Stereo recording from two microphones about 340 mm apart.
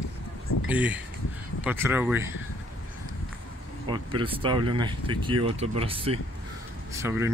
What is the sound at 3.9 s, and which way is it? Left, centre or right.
Speech, centre.